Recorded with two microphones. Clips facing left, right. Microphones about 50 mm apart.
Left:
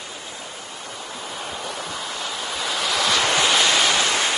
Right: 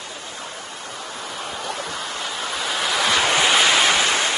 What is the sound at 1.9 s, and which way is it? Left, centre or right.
Waves, centre.